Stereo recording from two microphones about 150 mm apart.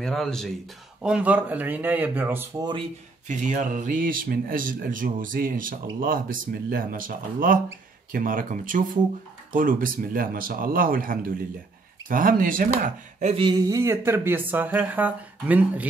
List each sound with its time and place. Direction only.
0.0 s speech: 5° left (ahead or behind)
1.0 s speech: 10° right (ahead or behind)
3.3 s speech: 55° right (ahead or behind)
13.3 s speech: 30° right (ahead or behind); by 15.9 s 10° right (ahead or behind)